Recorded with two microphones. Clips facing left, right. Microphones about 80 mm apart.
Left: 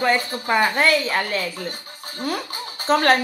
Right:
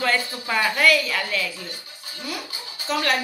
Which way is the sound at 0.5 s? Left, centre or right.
Left.